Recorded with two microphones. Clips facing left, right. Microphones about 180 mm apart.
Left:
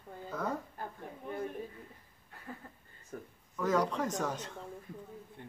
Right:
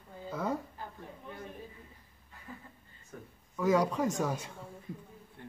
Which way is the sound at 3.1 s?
40° left (ahead or behind).